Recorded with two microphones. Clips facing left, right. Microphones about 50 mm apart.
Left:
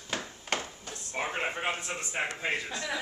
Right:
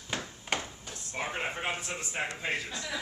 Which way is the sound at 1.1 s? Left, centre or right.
Centre.